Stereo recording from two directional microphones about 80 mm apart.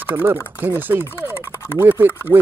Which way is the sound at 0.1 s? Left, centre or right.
Right.